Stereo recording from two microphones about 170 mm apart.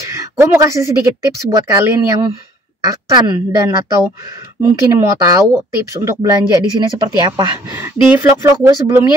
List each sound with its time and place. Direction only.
0.1 s a woman's voice: 15° right (ahead or behind)